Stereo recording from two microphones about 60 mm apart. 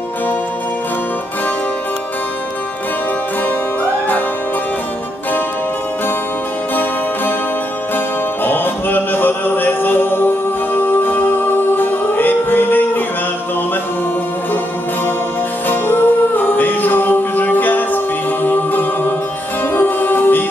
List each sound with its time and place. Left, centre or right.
6.7 s music: left
8.5 s music: left
15.7 s music: left